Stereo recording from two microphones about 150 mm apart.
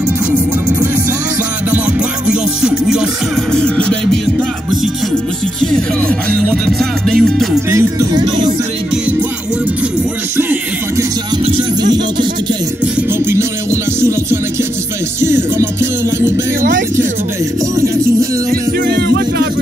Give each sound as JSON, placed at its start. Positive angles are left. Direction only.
{"t": 1.7, "sound": "music", "side_deg": -5}
{"t": 5.6, "sound": "music", "side_deg": 5}
{"t": 7.7, "sound": "music", "side_deg": -25}
{"t": 10.3, "sound": "music", "side_deg": -15}
{"t": 11.4, "sound": "music", "side_deg": -35}
{"t": 12.8, "sound": "music", "side_deg": -15}
{"t": 18.5, "sound": "music", "side_deg": -85}